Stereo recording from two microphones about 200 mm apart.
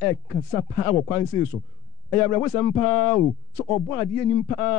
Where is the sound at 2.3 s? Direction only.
15° left (ahead or behind).